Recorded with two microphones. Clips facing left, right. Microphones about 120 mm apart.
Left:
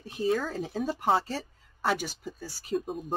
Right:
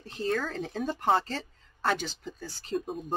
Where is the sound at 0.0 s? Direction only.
10° left (ahead or behind).